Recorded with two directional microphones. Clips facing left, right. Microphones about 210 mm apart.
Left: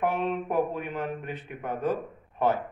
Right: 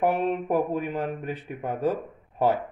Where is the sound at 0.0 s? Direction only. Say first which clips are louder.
Right 3 dB; 35° right (ahead or behind).